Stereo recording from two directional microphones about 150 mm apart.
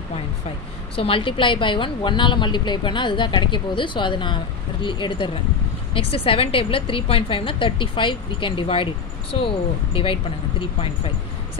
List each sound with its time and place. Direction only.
0.9 s a woman's voice: 40° left (ahead or behind)